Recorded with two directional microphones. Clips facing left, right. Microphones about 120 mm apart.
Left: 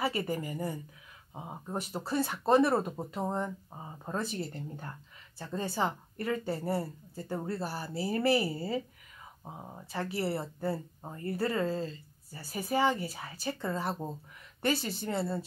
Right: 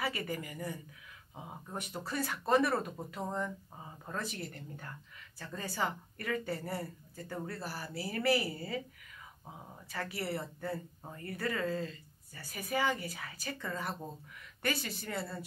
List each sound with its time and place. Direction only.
0.0 s speech: 30° left (ahead or behind)